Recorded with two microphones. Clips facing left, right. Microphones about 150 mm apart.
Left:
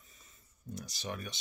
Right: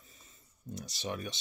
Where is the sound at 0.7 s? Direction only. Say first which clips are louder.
Right 3 dB; 25° right (ahead or behind).